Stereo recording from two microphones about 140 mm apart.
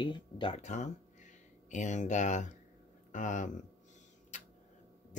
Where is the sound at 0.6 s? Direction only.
60° left (ahead or behind).